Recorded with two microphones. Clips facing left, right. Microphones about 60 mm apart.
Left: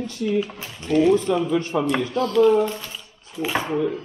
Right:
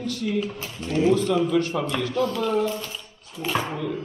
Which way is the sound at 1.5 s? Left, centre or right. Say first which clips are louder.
Left 1 dB; centre.